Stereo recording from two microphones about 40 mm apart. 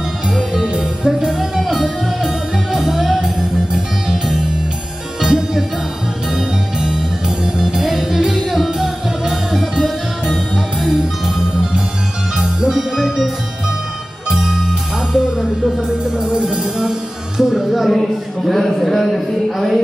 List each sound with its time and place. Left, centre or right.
1.0 s music: centre
5.2 s music: centre
10.9 s music: centre
14.3 s music: centre
16.2 s music: right
17.4 s a sound: centre